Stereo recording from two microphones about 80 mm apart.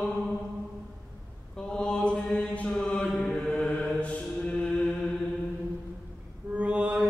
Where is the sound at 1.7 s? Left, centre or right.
Centre.